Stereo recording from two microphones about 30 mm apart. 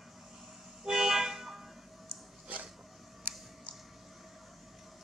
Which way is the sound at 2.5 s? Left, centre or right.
Right.